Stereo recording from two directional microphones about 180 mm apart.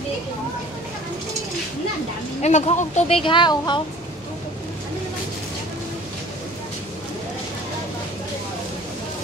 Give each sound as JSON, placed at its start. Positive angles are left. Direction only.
{"t": 2.4, "sound": "speech", "side_deg": 40}